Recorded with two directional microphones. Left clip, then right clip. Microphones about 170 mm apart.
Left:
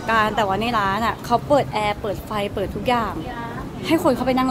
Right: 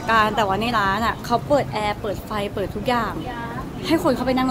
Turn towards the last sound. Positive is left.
turn(degrees=10)  # may be behind; listen again after turning